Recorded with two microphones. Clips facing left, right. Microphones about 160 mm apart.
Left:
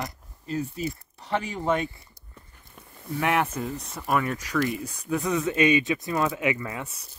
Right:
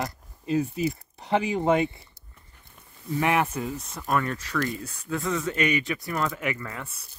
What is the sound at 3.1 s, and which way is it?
Speech, 10° right (ahead or behind).